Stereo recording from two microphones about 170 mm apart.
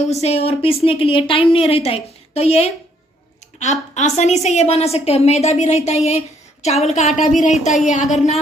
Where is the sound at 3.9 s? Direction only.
45° left (ahead or behind).